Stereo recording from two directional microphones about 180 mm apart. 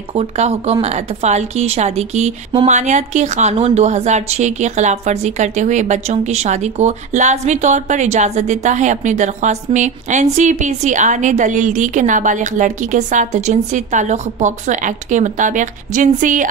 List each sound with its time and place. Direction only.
0.1 s speech: 35° right (ahead or behind)